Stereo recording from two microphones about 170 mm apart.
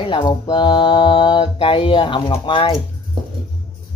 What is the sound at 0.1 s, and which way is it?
Speech, 30° left (ahead or behind).